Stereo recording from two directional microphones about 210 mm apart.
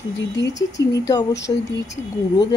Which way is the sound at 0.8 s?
15° left (ahead or behind).